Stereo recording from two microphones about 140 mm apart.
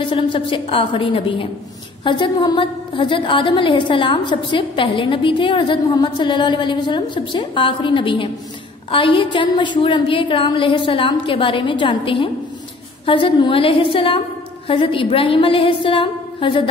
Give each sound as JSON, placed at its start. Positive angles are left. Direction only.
{"t": 0.0, "sound": "a woman's voice", "side_deg": 35}